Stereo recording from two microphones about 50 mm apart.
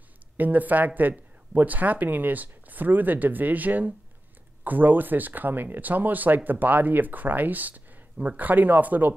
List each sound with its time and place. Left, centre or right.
0.4 s speech: right